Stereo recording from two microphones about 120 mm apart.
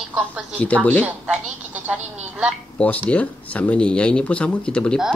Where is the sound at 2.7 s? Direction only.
10° left (ahead or behind).